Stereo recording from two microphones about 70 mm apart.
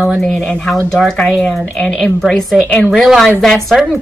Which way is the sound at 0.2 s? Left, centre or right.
Centre.